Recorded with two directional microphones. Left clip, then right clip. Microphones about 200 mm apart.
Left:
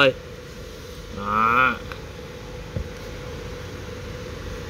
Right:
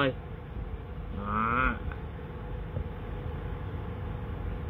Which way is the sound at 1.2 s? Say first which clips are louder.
Left 10 dB; 20° left (ahead or behind).